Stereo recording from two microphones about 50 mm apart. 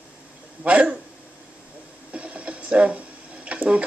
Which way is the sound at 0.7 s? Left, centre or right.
Right.